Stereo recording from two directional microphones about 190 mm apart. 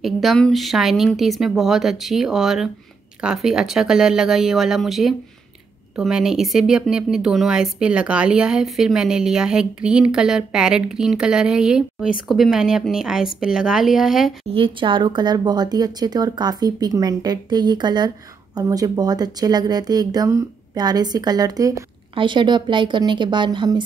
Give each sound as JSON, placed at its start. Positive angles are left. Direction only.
{"t": 0.0, "sound": "speech", "side_deg": 0}
{"t": 14.5, "sound": "speech", "side_deg": -25}